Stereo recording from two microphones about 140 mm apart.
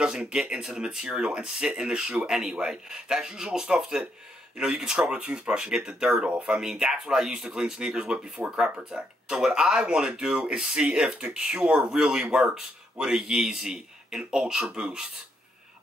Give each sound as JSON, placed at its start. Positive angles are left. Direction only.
{"t": 0.0, "sound": "speech", "side_deg": -5}